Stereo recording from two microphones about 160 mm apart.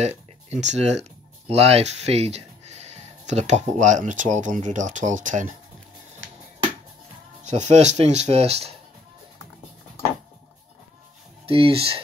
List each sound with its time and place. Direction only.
0.5 s speech: 45° right (ahead or behind)
7.4 s speech: 45° right (ahead or behind)
11.4 s speech: 35° right (ahead or behind)